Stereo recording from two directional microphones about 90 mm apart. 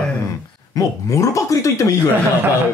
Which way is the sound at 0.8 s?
40° left (ahead or behind).